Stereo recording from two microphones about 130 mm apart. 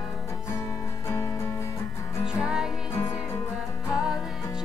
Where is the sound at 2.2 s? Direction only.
5° right (ahead or behind).